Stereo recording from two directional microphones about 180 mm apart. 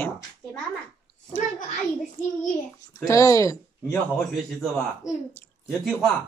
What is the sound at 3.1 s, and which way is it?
Speech, 15° left (ahead or behind).